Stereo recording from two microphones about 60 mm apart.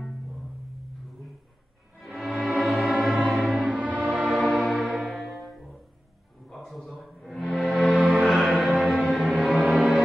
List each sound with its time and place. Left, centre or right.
2.0 s music: centre
3.5 s music: centre
4.4 s music: centre